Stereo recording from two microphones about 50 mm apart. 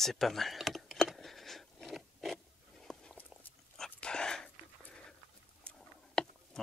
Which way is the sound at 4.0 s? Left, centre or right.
Centre.